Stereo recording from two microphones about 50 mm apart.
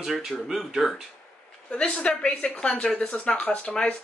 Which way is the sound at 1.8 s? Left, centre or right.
Left.